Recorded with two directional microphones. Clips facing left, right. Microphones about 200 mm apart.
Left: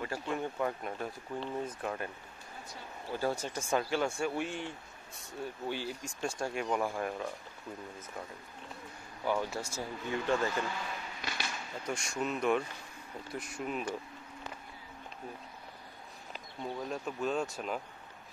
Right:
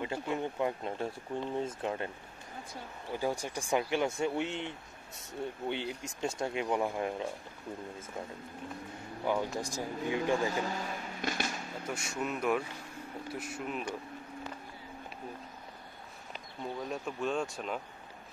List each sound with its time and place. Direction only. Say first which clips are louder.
0.0 s speech: right 2 dB; 20° right (ahead or behind)
3.1 s speech: even; 15° right (ahead or behind)
9.2 s speech: right 1 dB; 15° right (ahead or behind)
10.6 s a sound: right 2 dB; 40° right (ahead or behind)
11.8 s speech: left 1 dB; 5° right (ahead or behind)
16.3 s speech: even; centre (ahead or behind)